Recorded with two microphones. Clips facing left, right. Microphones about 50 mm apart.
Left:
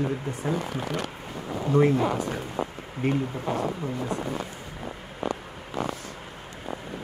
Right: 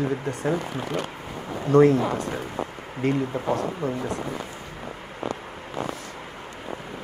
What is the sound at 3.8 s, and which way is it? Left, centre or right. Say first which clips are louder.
Speech: right 5 dB; right.